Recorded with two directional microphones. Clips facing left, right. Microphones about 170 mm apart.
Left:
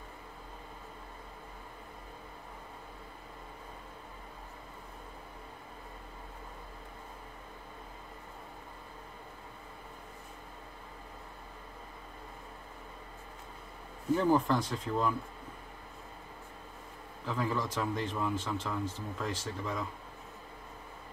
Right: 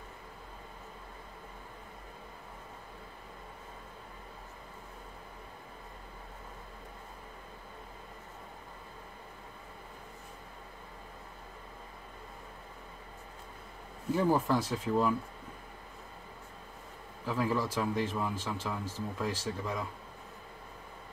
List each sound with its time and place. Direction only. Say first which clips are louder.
14.1 s speech: left 1 dB; 5° right (ahead or behind)
17.3 s speech: right 2 dB; 5° right (ahead or behind)